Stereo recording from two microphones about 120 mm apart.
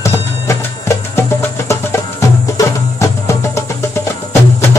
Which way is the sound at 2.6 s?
25° left (ahead or behind).